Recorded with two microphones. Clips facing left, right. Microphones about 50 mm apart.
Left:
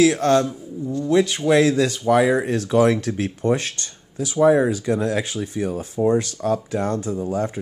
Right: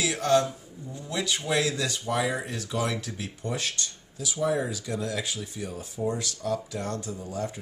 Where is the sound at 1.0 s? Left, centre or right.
Left.